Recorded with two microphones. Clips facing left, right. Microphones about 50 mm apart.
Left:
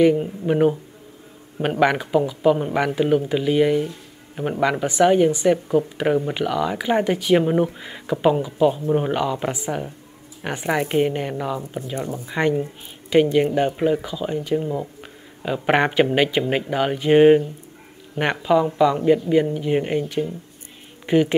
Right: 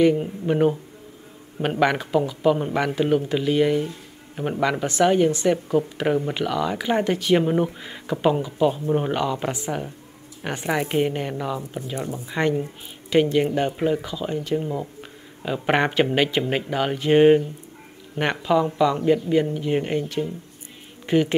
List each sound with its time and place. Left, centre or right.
0.0 s speech: centre
12.4 s speech: centre